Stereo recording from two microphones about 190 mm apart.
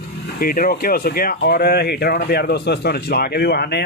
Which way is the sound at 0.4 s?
50° left (ahead or behind).